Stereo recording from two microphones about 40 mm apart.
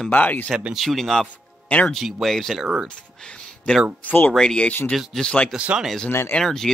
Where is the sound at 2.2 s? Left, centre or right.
Centre.